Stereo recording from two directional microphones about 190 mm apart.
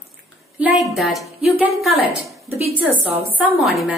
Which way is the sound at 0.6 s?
5° right (ahead or behind).